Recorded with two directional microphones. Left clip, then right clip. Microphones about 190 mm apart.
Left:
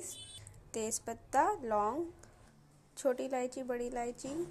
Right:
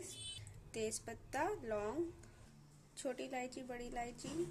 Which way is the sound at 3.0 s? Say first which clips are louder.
Left 10 dB; 20° left (ahead or behind).